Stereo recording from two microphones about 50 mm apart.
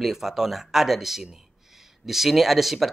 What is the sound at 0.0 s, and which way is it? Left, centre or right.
Speech, centre.